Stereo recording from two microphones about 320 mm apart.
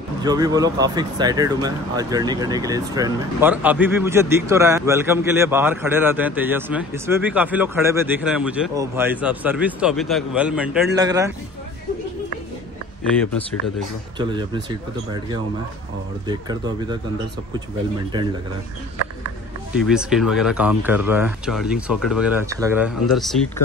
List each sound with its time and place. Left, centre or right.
0.2 s speech: centre
14.1 s speech: centre
16.3 s speech: centre
19.8 s speech: centre